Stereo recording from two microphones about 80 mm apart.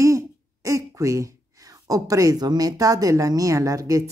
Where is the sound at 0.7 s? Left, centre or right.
Right.